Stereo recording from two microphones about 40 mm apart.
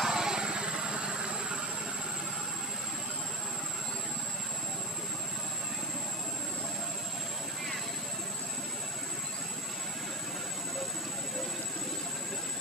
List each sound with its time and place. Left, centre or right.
0.0 s vehicle: centre